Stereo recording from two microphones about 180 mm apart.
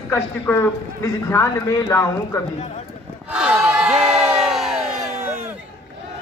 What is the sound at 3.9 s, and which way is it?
Crowd, 35° right (ahead or behind).